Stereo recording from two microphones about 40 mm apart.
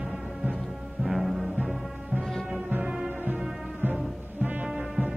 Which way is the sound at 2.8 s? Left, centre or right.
Centre.